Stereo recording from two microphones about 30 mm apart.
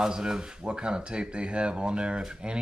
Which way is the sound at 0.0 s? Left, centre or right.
Right.